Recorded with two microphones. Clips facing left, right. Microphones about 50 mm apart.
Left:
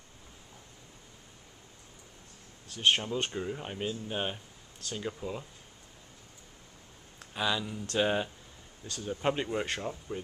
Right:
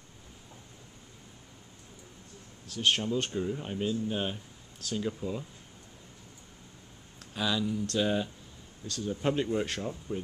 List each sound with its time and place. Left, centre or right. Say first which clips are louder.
2.7 s speech: even; centre
7.2 s speech: right 1 dB; centre